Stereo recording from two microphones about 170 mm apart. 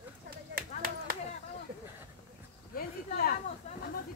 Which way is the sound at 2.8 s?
60° left (ahead or behind).